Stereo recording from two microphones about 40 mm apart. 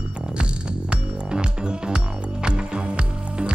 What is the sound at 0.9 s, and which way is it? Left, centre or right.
Music, right.